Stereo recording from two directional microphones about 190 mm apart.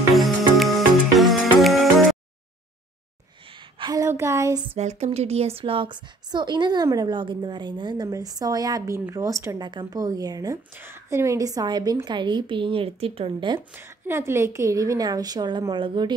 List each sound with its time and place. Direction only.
0.1 s music: centre (ahead or behind)
3.8 s a woman's voice: 20° right (ahead or behind)
4.7 s a woman's voice: 35° right (ahead or behind)
13.6 s a woman's voice: 10° right (ahead or behind)